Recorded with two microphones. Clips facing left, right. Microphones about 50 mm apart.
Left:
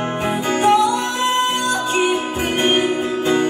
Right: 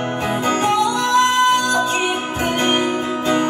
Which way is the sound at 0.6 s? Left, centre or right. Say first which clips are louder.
Left 6 dB; centre.